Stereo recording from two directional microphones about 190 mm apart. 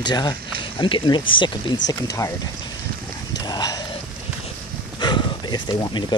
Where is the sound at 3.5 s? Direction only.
20° left (ahead or behind).